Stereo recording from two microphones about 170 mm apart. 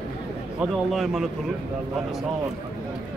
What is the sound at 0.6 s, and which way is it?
Speech, centre (ahead or behind).